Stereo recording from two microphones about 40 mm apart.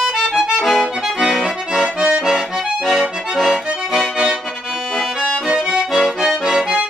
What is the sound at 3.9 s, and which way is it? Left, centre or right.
Accordion, centre.